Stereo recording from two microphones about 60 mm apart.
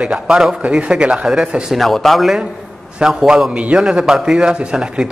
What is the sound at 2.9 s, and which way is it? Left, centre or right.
A man's voice, centre.